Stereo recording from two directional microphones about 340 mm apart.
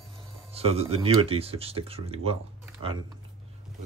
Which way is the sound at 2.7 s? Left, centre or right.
Centre.